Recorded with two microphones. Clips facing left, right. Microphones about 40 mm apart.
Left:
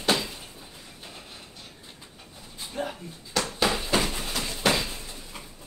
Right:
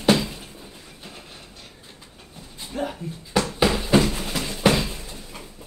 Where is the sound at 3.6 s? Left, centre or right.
Centre.